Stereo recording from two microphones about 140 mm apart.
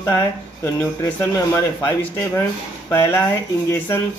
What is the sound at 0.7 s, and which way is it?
Speech, 15° left (ahead or behind).